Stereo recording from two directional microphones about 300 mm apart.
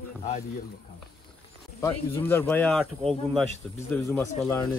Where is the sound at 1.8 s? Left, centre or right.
Centre.